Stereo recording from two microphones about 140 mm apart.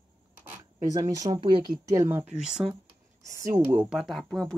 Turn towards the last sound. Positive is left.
turn(degrees=0)  # may be behind; listen again after turning